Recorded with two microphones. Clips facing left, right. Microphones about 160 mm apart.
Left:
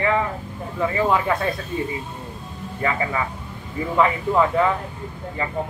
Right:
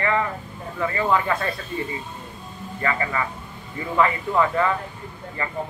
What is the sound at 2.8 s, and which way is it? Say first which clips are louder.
A man's voice: left 1 dB; 10° left (ahead or behind).